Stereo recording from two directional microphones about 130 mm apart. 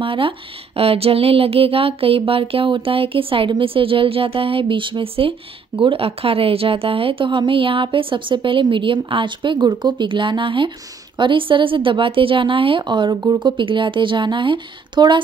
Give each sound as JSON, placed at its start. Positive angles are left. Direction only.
{"t": 0.0, "sound": "a woman's voice", "side_deg": -40}
{"t": 0.7, "sound": "a sound", "side_deg": -50}
{"t": 5.8, "sound": "a woman's voice", "side_deg": -45}